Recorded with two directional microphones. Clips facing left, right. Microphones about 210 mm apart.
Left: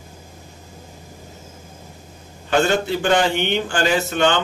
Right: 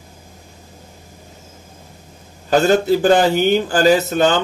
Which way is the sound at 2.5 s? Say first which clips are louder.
Right 5 dB; 40° right (ahead or behind).